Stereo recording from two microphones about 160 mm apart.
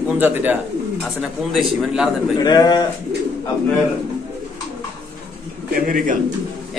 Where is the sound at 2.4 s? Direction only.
25° left (ahead or behind).